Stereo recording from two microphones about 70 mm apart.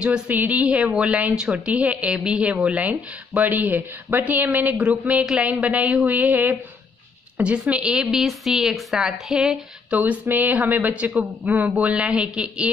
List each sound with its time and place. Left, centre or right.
0.0 s a woman's voice: centre
9.9 s a woman's voice: right